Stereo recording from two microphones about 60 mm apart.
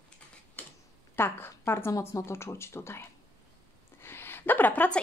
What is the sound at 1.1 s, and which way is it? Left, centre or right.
A woman's voice, left.